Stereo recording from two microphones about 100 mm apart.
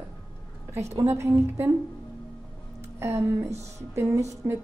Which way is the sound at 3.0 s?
25° right (ahead or behind).